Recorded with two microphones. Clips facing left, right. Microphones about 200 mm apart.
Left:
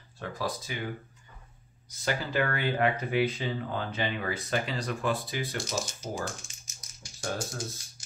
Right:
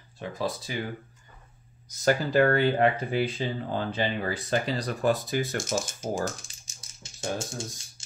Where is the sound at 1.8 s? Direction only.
45° right (ahead or behind).